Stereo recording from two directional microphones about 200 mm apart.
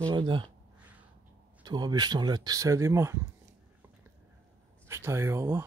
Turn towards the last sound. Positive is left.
turn(degrees=-15)  # may be behind; listen again after turning